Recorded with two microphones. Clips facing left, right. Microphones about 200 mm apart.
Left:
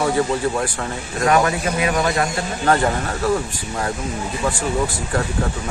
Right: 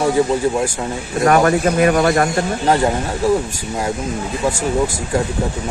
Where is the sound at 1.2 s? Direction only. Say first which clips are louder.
Right 4 dB; 45° right (ahead or behind).